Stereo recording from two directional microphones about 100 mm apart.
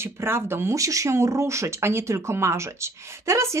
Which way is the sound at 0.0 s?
25° right (ahead or behind).